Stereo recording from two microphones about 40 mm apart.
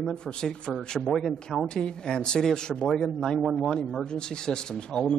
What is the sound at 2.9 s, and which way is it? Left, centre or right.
Speech, centre.